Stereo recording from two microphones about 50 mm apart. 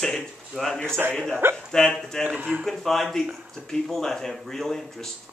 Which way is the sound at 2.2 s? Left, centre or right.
Right.